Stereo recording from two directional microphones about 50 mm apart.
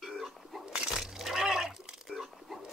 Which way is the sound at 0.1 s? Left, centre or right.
Centre.